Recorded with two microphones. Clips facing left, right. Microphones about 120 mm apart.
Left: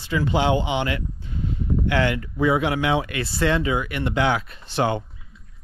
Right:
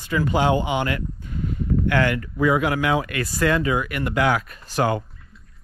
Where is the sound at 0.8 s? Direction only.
45° right (ahead or behind).